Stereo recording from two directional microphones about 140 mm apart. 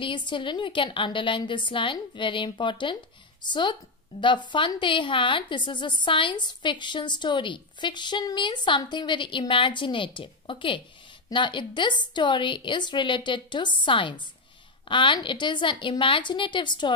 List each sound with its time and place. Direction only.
0.0 s a woman's voice: 35° left (ahead or behind)